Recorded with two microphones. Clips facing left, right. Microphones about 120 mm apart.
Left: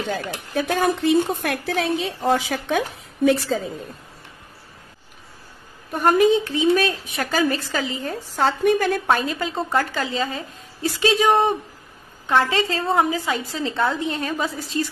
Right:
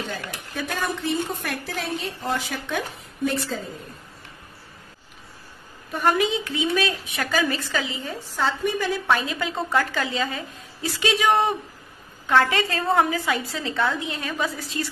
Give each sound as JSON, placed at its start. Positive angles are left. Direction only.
{"t": 0.8, "sound": "a woman's voice", "side_deg": 70}
{"t": 3.3, "sound": "a woman's voice", "side_deg": 70}
{"t": 5.9, "sound": "a woman's voice", "side_deg": 40}
{"t": 9.0, "sound": "a woman's voice", "side_deg": 40}
{"t": 13.5, "sound": "a woman's voice", "side_deg": 35}